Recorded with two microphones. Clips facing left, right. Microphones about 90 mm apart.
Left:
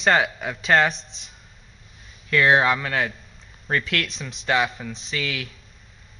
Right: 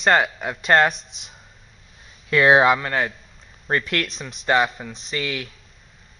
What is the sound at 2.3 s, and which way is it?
Speech, 20° right (ahead or behind).